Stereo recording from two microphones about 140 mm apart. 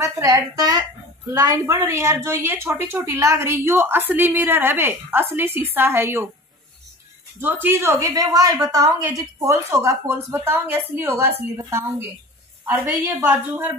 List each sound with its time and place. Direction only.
0.0 s a woman's voice: 25° right (ahead or behind)
7.3 s a woman's voice: 15° right (ahead or behind)